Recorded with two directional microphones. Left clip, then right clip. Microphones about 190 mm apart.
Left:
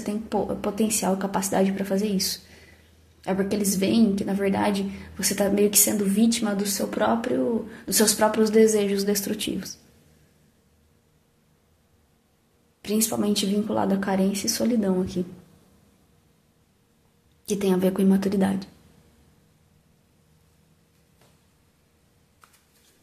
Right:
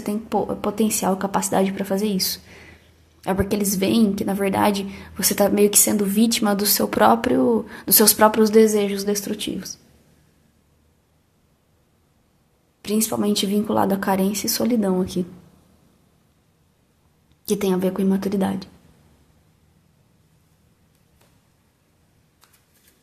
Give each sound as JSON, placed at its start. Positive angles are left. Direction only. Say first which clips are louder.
{"t": 0.0, "sound": "a woman's voice", "louder": "right 4 dB", "side_deg": -15}
{"t": 12.8, "sound": "a woman's voice", "louder": "right 3 dB", "side_deg": -15}
{"t": 17.5, "sound": "a woman's voice", "louder": "right 2 dB", "side_deg": -20}